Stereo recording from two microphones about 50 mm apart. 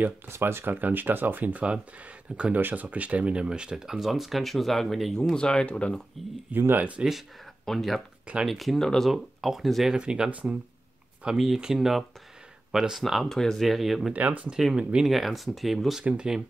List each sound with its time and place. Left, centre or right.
0.3 s speech: right
3.4 s speech: centre
5.3 s speech: centre
6.2 s speech: centre
7.0 s speech: right
7.6 s speech: centre
9.1 s speech: centre
9.8 s speech: centre
11.3 s speech: centre
13.2 s speech: centre
14.1 s speech: right
14.8 s speech: centre
15.0 s speech: centre
16.3 s speech: centre